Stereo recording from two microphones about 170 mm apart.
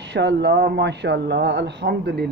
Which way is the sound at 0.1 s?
90° right.